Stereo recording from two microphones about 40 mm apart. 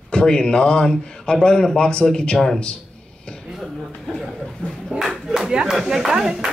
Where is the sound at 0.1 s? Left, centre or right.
Left.